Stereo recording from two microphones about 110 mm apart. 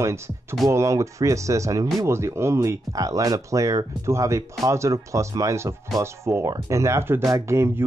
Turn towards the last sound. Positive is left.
turn(degrees=-25)  # may be behind; listen again after turning